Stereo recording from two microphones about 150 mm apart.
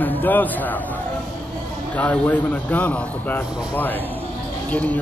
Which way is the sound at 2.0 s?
10° left (ahead or behind).